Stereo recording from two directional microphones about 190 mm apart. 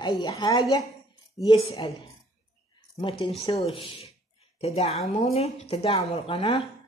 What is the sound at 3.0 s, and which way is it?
A woman's voice, 30° left (ahead or behind).